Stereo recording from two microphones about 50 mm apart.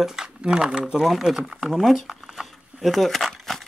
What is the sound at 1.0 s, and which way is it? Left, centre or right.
Speech, centre.